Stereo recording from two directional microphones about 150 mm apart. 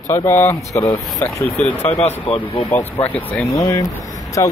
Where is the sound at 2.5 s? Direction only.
40° left (ahead or behind).